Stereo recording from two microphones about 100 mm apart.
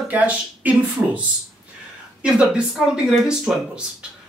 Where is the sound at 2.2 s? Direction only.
10° right (ahead or behind).